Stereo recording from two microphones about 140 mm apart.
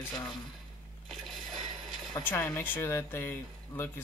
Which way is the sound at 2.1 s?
15° left (ahead or behind).